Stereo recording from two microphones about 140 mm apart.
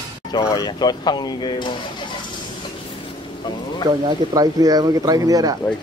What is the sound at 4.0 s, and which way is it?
Speech, 35° right (ahead or behind).